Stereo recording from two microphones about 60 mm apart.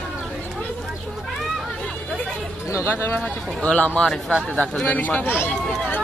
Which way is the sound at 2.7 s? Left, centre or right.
Left.